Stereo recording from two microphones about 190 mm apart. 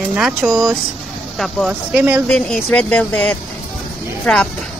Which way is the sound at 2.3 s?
5° left (ahead or behind).